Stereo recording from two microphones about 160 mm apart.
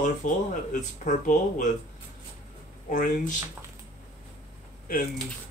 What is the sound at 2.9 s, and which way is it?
Speech, 55° left (ahead or behind).